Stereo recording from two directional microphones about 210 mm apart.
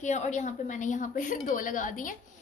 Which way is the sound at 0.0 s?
35° left (ahead or behind).